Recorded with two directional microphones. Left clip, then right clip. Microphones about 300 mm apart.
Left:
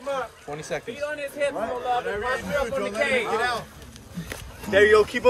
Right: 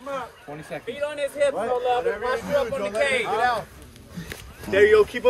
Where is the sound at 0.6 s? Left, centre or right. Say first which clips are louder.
Left 4 dB; centre.